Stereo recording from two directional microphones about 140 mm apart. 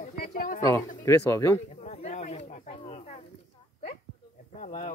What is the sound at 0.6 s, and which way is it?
A man's voice, 25° left (ahead or behind).